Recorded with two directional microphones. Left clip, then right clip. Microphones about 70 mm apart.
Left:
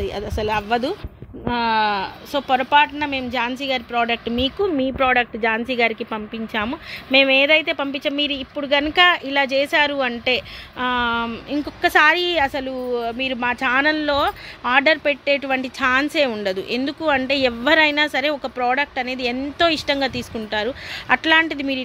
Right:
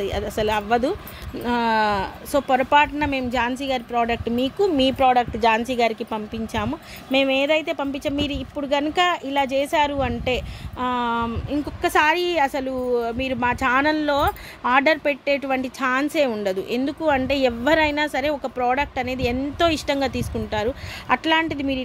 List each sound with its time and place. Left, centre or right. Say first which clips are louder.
0.0 s speech: right 1 dB; centre
1.5 s speech: left 1 dB; right
3.4 s speech: left 1 dB; centre
6.5 s speech: left 4 dB; centre
12.4 s speech: even; right; by 21.8 s centre